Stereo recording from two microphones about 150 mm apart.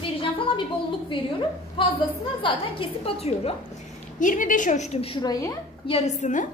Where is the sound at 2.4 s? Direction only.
35° left (ahead or behind).